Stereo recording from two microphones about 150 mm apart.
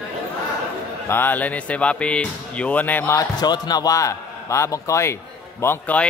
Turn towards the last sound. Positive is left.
turn(degrees=15)  # may be behind; listen again after turning